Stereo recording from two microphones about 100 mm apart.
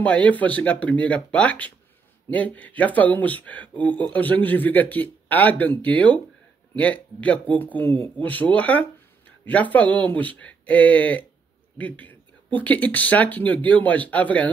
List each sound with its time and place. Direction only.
0.0 s speech: 15° left (ahead or behind)